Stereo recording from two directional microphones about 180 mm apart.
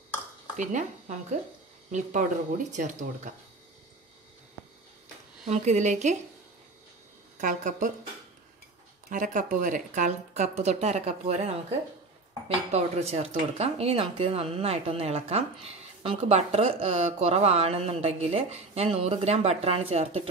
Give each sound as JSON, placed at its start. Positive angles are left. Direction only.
{"t": 0.6, "sound": "speech", "side_deg": -45}
{"t": 5.5, "sound": "speech", "side_deg": -40}
{"t": 7.3, "sound": "speech", "side_deg": -45}
{"t": 9.1, "sound": "speech", "side_deg": -45}
{"t": 12.7, "sound": "speech", "side_deg": -35}